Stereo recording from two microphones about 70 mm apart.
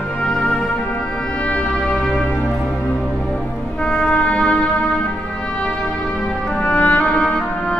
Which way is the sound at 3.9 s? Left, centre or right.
Centre.